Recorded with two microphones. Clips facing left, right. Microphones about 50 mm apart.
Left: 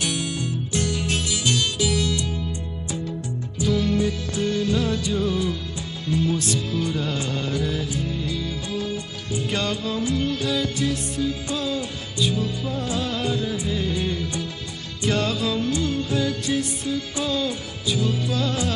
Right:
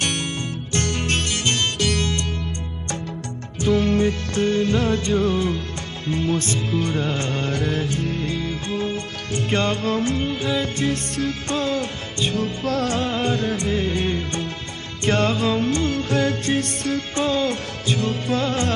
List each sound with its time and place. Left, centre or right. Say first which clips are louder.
0.0 s music: right 1 dB; right
3.6 s music: right 3 dB; right
8.9 s music: right 2 dB; right
9.5 s music of bollywood: right 5 dB; right
10.2 s music: right 1 dB; right
11.1 s music: right 1 dB; right
11.5 s music: right 3 dB; right
12.6 s music: right 6 dB; right
13.2 s music: right 3 dB; right
13.7 s music of bollywood: right 3 dB; right
15.7 s music: right 3 dB; right
17.2 s music: right 6 dB; right